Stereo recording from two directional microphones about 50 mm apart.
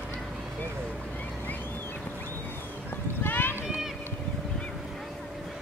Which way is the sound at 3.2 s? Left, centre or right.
Left.